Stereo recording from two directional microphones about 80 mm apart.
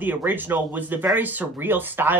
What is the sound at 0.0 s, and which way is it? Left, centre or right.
Speech, right.